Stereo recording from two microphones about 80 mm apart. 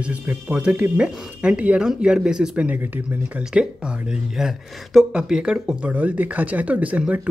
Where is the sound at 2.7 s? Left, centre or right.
Centre.